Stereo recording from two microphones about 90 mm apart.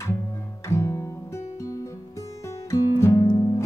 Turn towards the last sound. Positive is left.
turn(degrees=45)  # may be behind; listen again after turning